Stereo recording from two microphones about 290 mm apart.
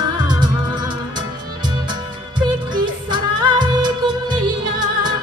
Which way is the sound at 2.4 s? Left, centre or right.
Centre.